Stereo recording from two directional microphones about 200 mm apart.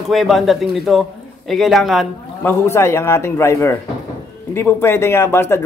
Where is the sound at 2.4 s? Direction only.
15° left (ahead or behind).